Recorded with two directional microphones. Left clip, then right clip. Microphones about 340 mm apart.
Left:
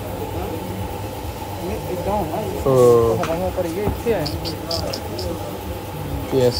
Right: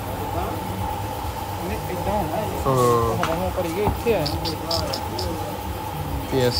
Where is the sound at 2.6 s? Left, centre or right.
Centre.